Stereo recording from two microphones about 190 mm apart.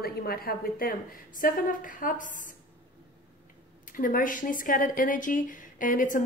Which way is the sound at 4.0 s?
45° left (ahead or behind).